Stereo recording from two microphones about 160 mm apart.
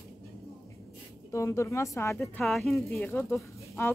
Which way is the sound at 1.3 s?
20° left (ahead or behind).